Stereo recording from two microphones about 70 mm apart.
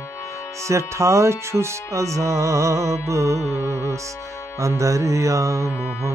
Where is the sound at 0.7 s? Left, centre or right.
Right.